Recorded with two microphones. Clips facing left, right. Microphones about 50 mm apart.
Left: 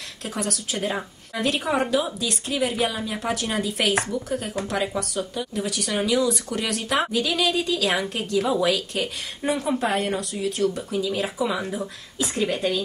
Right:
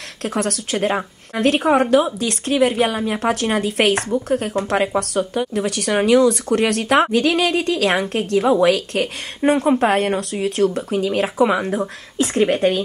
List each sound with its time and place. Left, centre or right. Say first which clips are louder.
0.2 s speech: right 7 dB; right
8.6 s speech: right 6 dB; right